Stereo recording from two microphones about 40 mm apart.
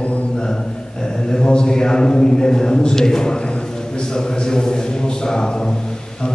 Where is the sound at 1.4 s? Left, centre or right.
Left.